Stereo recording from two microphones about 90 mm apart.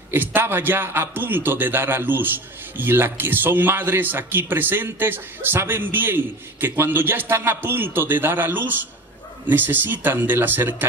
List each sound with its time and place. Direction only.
0.1 s a man's voice: 25° right (ahead or behind)